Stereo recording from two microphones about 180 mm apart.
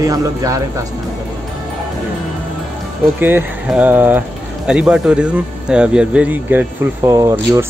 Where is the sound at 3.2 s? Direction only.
10° right (ahead or behind).